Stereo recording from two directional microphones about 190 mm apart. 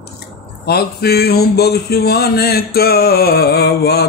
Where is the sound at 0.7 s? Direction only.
55° left (ahead or behind).